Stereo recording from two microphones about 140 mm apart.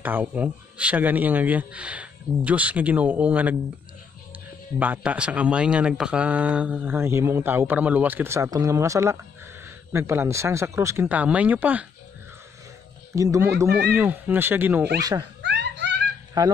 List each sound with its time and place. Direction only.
0.0 s speech: 10° right (ahead or behind)
4.7 s speech: 10° right (ahead or behind)
13.1 s speech: 20° right (ahead or behind)
15.0 s speech: 25° right (ahead or behind)
16.4 s speech: 25° right (ahead or behind)